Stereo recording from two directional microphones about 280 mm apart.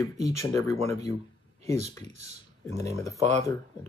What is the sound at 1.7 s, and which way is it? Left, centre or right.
Speech, right.